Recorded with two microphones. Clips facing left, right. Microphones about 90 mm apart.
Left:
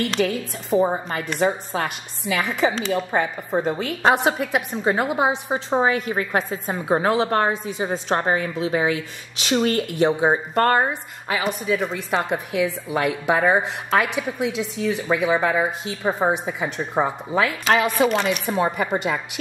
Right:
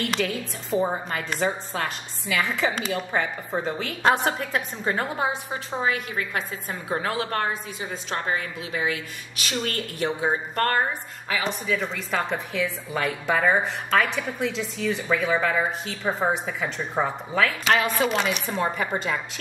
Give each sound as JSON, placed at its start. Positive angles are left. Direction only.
{"t": 0.2, "sound": "a woman's voice", "side_deg": 40}
{"t": 0.7, "sound": "a woman's voice", "side_deg": 15}